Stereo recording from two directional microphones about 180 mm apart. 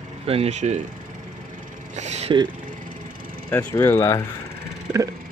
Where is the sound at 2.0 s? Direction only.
40° right (ahead or behind).